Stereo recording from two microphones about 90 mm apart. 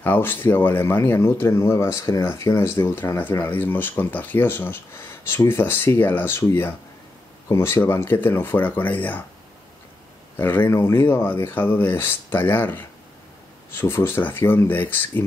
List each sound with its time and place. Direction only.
0.0 s speech: 20° left (ahead or behind)
10.3 s speech: 20° left (ahead or behind)